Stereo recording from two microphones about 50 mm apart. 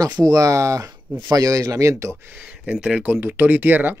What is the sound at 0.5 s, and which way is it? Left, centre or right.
Speech, right.